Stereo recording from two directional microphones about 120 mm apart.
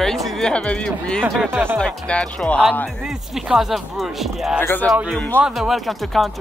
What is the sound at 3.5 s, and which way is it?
Speech, centre (ahead or behind).